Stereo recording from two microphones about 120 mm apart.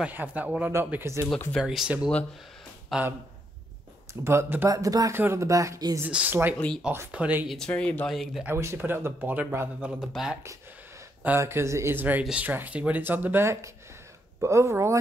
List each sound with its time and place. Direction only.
0.0 s speech: 15° right (ahead or behind)
0.7 s speech: 25° right (ahead or behind)
1.6 s speech: 5° right (ahead or behind)
4.1 s speech: 20° right (ahead or behind)
4.6 s speech: 30° right (ahead or behind)
5.9 s speech: 15° right (ahead or behind)
7.4 s speech: 5° left (ahead or behind)
8.1 s speech: centre (ahead or behind)
8.5 s speech: 20° right (ahead or behind)
11.2 s speech: 20° right (ahead or behind)